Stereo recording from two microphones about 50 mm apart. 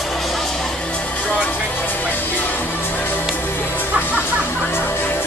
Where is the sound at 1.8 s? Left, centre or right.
Left.